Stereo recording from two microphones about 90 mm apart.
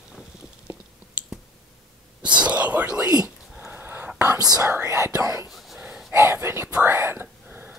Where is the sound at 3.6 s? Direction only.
20° right (ahead or behind).